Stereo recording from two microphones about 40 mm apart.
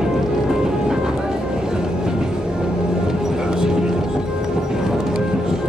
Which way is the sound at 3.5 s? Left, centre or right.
Centre.